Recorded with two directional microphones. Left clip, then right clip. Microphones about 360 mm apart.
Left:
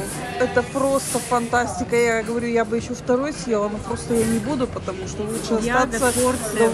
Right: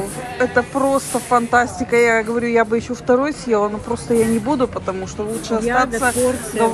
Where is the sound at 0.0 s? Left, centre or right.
Centre.